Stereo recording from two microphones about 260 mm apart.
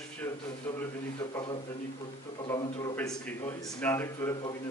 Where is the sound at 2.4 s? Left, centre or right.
Centre.